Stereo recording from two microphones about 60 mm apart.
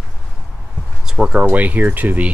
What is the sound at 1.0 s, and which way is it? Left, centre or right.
Speech, centre.